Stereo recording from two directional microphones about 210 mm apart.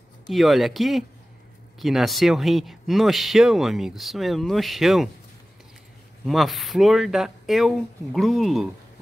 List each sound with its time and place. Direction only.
0.3 s speech: centre (ahead or behind)
6.2 s speech: centre (ahead or behind)